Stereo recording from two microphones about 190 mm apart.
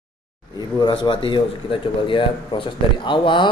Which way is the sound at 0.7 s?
25° left (ahead or behind).